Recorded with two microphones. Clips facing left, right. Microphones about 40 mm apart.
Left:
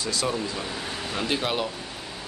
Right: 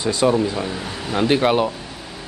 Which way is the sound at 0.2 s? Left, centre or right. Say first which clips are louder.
Right 10 dB; right.